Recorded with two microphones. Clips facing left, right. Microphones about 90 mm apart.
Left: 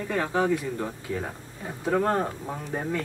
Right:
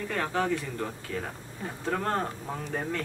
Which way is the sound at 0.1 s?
20° left (ahead or behind).